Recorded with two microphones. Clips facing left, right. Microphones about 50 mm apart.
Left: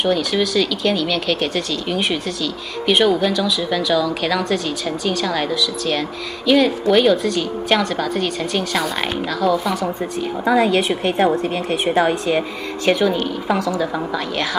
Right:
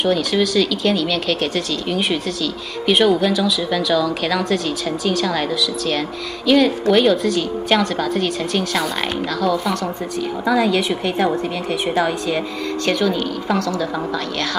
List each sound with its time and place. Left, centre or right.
0.0 s a woman's voice: centre
10.4 s a woman's voice: centre
11.9 s a woman's voice: centre